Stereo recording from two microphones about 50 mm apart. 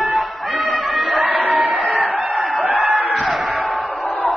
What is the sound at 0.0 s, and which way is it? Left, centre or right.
Music, centre.